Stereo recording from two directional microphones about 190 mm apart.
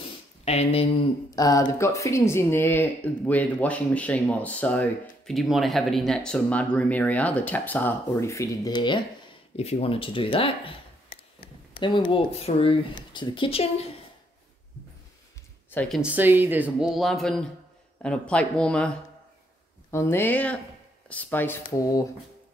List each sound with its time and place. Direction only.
0.5 s speech: 30° left (ahead or behind)
1.3 s speech: 20° left (ahead or behind)
11.8 s speech: 25° left (ahead or behind)
15.7 s speech: 5° left (ahead or behind)
16.0 s speech: 10° right (ahead or behind); by 22.0 s 20° left (ahead or behind)